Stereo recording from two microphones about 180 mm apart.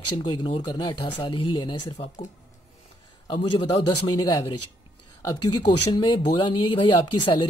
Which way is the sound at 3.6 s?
20° left (ahead or behind).